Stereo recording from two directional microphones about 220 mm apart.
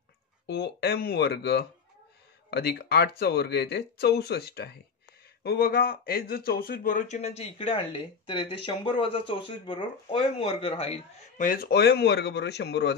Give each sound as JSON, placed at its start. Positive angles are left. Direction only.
{"t": 0.5, "sound": "speech", "side_deg": 50}